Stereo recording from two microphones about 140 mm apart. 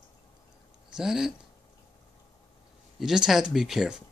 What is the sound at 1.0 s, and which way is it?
Speech, 5° right (ahead or behind).